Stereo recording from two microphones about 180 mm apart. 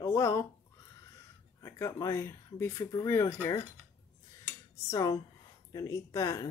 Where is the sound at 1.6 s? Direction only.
15° left (ahead or behind).